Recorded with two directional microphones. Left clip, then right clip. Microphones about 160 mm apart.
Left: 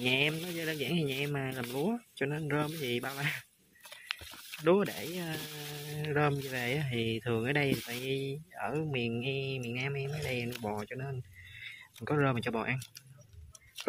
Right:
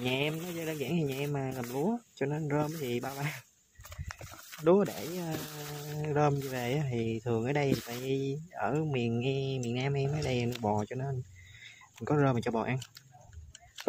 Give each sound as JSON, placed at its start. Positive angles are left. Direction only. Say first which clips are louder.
{"t": 0.0, "sound": "speech", "louder": "left 2 dB", "side_deg": -5}
{"t": 4.6, "sound": "speech", "louder": "right 2 dB", "side_deg": -15}
{"t": 10.6, "sound": "speech", "louder": "right 5 dB", "side_deg": -15}